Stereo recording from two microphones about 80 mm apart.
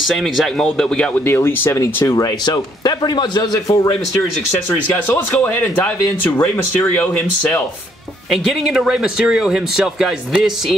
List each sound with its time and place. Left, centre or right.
0.1 s speech: centre
1.2 s speech: left
2.1 s a man's voice: left
4.6 s speech: left
8.3 s speech: centre